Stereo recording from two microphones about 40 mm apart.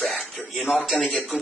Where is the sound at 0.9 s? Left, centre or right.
Left.